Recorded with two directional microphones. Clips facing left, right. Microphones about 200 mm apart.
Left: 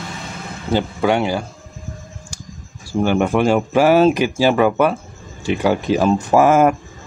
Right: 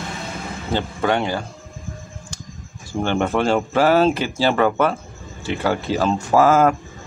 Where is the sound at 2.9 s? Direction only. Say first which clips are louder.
Left 4 dB; 10° left (ahead or behind).